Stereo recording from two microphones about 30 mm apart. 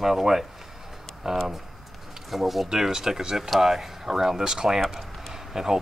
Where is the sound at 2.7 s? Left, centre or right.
Centre.